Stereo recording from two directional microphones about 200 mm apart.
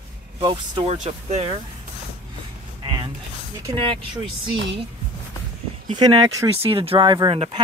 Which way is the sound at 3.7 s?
25° right (ahead or behind).